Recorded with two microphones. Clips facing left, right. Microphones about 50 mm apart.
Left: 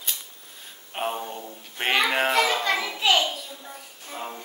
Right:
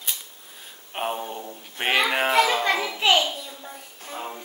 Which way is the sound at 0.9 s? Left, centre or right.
Centre.